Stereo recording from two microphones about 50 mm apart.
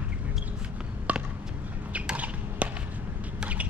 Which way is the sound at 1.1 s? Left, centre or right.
Right.